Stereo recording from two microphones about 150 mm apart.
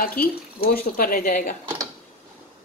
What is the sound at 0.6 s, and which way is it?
Speech, 85° left.